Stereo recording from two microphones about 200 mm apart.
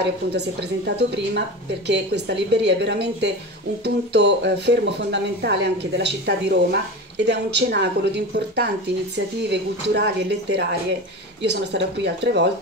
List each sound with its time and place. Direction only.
0.6 s speech: 60° right (ahead or behind)